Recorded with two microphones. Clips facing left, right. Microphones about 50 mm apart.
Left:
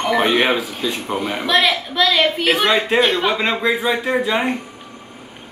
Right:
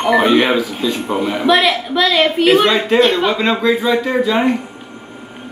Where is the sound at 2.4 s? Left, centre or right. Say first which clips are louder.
Right 5 dB; centre.